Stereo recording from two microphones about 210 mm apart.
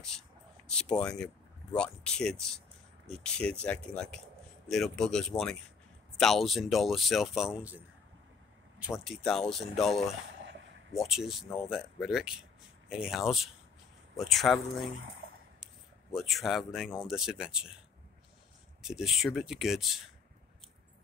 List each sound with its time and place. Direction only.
0.7 s speech: 5° left (ahead or behind)
9.0 s speech: centre (ahead or behind)
11.0 s speech: centre (ahead or behind)
15.0 s speech: 70° right (ahead or behind)
15.6 s a sound: centre (ahead or behind)
17.0 s speech: 5° right (ahead or behind)
18.8 s speech: centre (ahead or behind)